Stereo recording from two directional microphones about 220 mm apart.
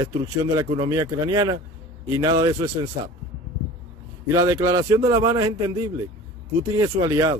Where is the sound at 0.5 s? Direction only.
20° right (ahead or behind).